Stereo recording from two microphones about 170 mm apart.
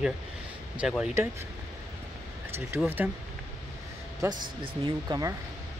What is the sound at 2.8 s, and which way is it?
Speech, 10° right (ahead or behind).